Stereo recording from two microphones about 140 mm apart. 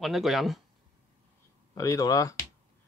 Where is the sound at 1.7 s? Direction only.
25° left (ahead or behind).